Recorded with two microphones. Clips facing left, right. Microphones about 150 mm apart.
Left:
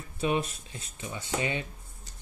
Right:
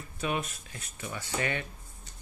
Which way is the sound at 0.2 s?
30° left (ahead or behind).